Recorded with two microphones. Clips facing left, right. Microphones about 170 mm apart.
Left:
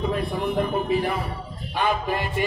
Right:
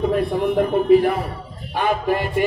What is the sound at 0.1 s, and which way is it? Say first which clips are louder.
A man's voice: right 6 dB; 55° right (ahead or behind).